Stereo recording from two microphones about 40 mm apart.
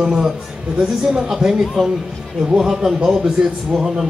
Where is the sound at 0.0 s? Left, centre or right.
Centre.